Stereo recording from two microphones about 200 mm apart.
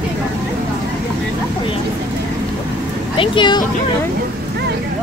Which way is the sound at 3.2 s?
25° left (ahead or behind).